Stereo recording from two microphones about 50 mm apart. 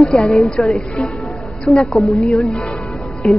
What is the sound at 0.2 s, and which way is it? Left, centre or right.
Speech, centre.